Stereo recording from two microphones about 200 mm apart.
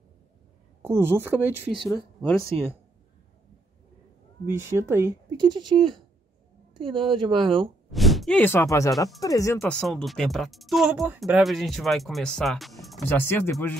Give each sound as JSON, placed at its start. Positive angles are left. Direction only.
{"t": 0.8, "sound": "speech", "side_deg": -10}
{"t": 4.5, "sound": "speech", "side_deg": -10}
{"t": 7.9, "sound": "speech", "side_deg": 0}
{"t": 13.0, "sound": "speech", "side_deg": 10}